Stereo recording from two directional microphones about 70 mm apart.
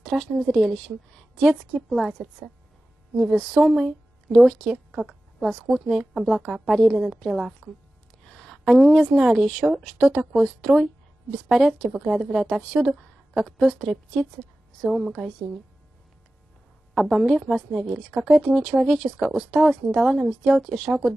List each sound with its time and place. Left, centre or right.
0.1 s a woman's voice: centre
8.3 s a sound: centre
9.1 s a woman's voice: centre
14.9 s a woman's voice: centre
16.9 s a woman's voice: centre